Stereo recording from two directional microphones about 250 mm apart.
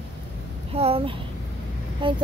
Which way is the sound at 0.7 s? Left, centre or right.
Right.